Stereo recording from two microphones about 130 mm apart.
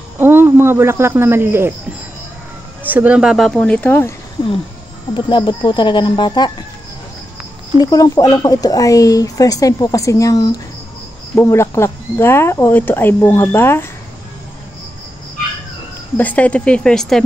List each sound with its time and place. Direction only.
0.2 s speech: 15° right (ahead or behind)
2.8 s speech: 15° right (ahead or behind); by 4.1 s 15° left (ahead or behind)
5.1 s speech: 35° left (ahead or behind)
7.8 s speech: 25° left (ahead or behind)
16.2 s speech: 10° left (ahead or behind)